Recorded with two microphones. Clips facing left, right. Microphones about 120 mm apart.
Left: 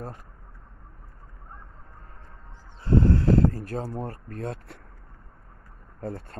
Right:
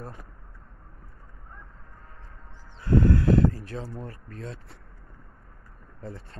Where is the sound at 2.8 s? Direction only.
30° left (ahead or behind); by 4.7 s 60° left (ahead or behind).